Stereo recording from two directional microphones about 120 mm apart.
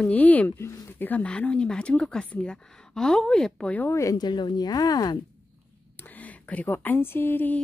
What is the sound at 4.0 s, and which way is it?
Speech, 30° left (ahead or behind).